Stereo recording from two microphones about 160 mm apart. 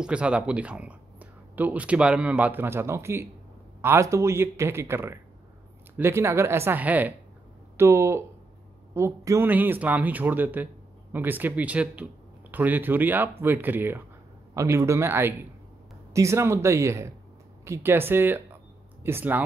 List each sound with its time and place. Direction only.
0.0 s speech: 5° right (ahead or behind)